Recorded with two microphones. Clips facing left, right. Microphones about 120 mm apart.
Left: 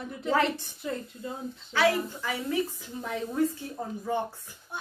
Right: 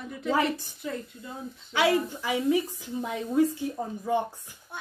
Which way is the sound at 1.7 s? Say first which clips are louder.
Right 1 dB; 15° right (ahead or behind).